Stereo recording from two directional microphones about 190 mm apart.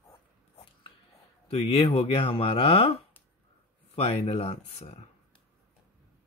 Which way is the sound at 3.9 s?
30° left (ahead or behind).